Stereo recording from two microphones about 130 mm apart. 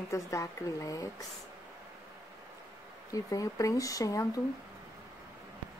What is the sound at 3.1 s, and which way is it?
Speech, 25° left (ahead or behind).